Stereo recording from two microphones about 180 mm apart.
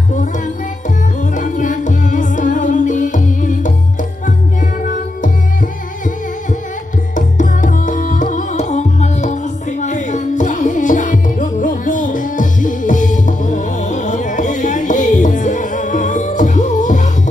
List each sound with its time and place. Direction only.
1.3 s music: 45° left (ahead or behind)
7.2 s music: 45° left (ahead or behind)